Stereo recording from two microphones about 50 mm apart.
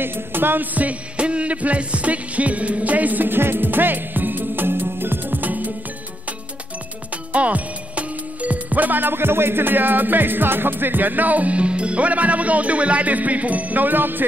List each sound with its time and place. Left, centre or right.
0.0 s music: right
0.7 s music: right
7.3 s speech: right